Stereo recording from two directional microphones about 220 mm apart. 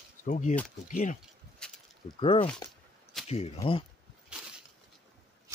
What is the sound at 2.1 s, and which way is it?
Speech, 25° left (ahead or behind).